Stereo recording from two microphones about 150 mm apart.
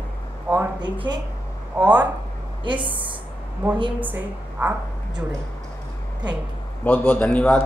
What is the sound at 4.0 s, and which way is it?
Speech, 10° right (ahead or behind).